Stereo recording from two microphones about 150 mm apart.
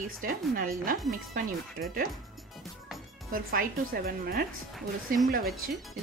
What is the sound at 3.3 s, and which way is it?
Speech, 75° right (ahead or behind).